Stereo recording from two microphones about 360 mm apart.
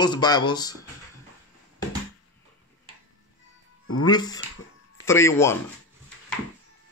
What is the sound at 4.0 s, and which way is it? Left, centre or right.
A woman's voice, centre.